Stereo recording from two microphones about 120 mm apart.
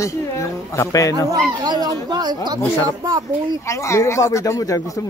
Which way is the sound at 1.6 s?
35° right (ahead or behind).